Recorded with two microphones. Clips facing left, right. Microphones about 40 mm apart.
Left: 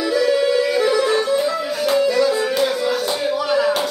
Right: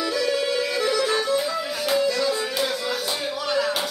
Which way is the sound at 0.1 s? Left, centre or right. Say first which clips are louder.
Left 9 dB; centre.